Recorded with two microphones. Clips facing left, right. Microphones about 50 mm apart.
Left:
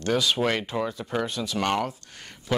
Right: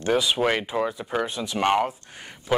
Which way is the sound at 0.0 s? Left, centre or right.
Centre.